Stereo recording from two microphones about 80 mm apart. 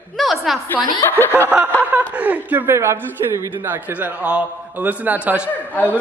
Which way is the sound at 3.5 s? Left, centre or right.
Right.